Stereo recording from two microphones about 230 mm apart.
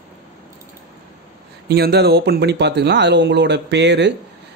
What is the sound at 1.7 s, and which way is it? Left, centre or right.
Speech, right.